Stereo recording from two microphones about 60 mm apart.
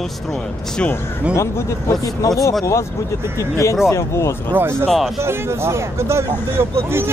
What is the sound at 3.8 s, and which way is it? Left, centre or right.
Speech, left.